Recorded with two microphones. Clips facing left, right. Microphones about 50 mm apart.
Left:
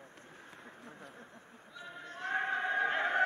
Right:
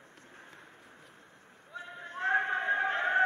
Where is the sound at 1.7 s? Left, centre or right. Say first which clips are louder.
Right 5 dB; right.